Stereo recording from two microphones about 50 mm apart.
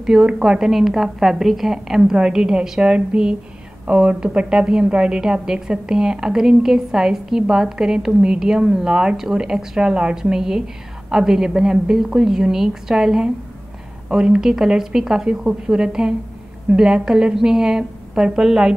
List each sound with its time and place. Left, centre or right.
0.0 s a woman's voice: centre